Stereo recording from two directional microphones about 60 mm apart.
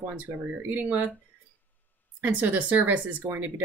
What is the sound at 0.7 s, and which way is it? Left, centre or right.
Speech, right.